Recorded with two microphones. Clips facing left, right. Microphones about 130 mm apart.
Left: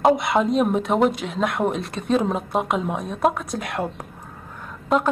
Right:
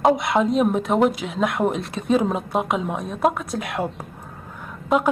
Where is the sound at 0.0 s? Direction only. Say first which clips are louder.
Even; centre (ahead or behind).